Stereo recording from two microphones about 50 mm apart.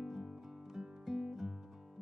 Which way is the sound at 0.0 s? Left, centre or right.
Centre.